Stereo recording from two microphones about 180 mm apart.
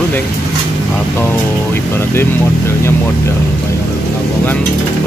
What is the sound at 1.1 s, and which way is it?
Speech, 10° left (ahead or behind).